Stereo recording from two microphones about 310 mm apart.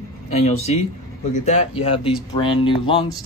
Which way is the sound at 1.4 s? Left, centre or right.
Centre.